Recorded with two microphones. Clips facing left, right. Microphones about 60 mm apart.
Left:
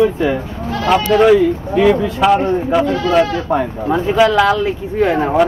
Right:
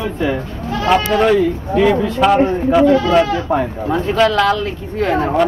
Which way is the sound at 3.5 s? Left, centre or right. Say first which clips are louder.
Left 1 dB; centre.